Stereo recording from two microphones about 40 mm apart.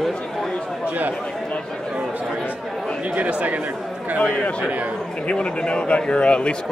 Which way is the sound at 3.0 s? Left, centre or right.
Right.